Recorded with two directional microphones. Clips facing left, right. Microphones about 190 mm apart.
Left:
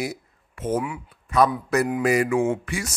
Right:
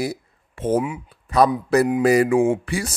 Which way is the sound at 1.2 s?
35° right (ahead or behind).